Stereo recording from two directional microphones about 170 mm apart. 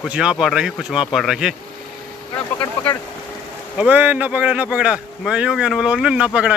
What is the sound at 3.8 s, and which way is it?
Speech, 10° right (ahead or behind).